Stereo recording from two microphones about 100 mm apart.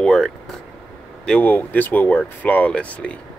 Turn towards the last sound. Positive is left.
turn(degrees=10)  # may be behind; listen again after turning